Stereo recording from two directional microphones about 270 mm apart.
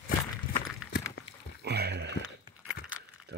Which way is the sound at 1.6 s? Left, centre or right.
Right.